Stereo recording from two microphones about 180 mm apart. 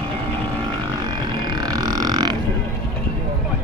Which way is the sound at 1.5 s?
20° right (ahead or behind).